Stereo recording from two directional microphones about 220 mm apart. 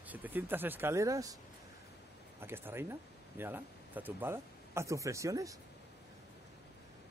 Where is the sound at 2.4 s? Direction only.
10° right (ahead or behind).